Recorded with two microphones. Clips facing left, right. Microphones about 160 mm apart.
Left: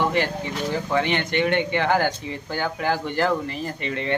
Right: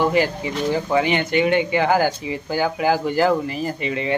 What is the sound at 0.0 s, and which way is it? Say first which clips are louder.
Speech: right 4 dB; 5° right (ahead or behind).